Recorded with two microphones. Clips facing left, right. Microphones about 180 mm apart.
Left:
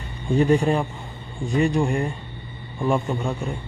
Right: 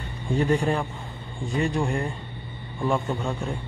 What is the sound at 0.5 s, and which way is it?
Speech, 20° left (ahead or behind).